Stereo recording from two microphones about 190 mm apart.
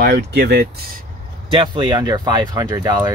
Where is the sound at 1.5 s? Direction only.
25° right (ahead or behind).